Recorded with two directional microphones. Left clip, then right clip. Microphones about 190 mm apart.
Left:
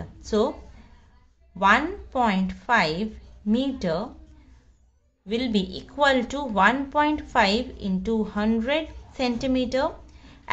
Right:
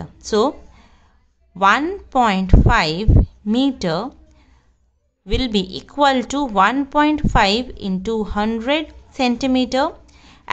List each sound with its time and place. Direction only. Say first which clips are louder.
0.3 s speech: right 6 dB; 40° right (ahead or behind)
1.6 s speech: right 5 dB; 40° right (ahead or behind)
5.2 s speech: right 5 dB; 35° right (ahead or behind)